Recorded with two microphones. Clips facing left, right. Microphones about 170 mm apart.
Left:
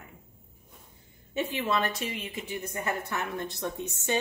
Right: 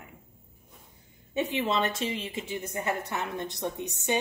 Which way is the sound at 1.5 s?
25° right (ahead or behind).